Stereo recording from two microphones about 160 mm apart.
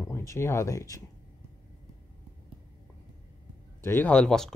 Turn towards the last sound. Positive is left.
turn(degrees=5)  # may be behind; listen again after turning